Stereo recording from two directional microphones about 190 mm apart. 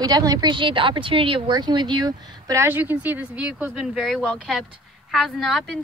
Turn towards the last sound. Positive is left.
turn(degrees=0)  # may be behind; listen again after turning